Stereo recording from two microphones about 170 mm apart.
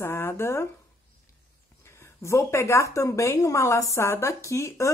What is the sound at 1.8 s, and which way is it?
Speech, 15° left (ahead or behind).